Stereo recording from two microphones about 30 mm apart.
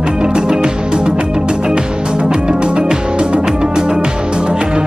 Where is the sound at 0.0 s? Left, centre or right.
Right.